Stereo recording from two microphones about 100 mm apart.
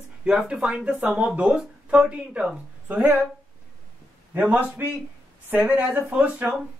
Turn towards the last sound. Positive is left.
turn(degrees=-10)  # may be behind; listen again after turning